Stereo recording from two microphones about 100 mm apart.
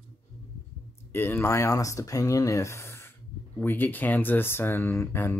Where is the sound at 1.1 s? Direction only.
20° left (ahead or behind).